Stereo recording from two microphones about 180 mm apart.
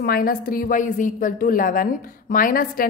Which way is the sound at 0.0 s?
55° left (ahead or behind).